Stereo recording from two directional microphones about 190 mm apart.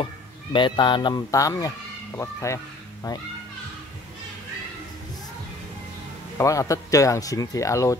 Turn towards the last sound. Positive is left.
turn(degrees=15)  # may be behind; listen again after turning